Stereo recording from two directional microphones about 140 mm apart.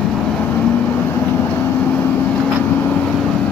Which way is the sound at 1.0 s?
15° left (ahead or behind).